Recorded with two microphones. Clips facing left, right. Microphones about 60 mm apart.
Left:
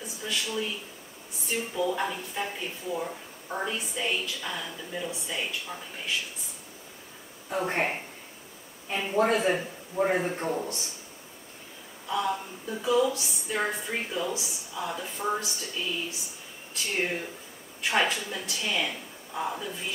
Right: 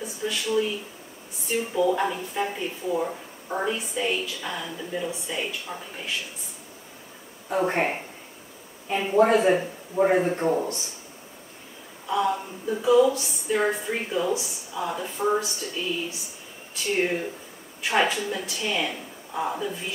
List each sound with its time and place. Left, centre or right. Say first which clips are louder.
0.0 s a woman's voice: right 4 dB; centre
7.4 s a woman's voice: right 4 dB; centre
12.1 s a woman's voice: right 4 dB; centre